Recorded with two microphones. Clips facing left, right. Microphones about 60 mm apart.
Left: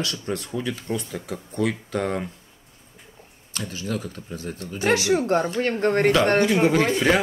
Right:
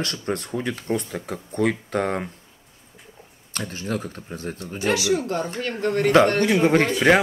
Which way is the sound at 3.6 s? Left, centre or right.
Right.